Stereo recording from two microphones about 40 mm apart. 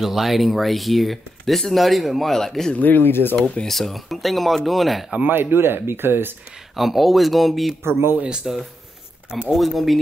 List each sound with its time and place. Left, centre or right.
0.0 s speech: centre
2.3 s speech: centre
2.8 s speech: left
3.6 s speech: centre
5.3 s speech: right
6.7 s speech: centre
7.8 s speech: right
8.5 s speech: centre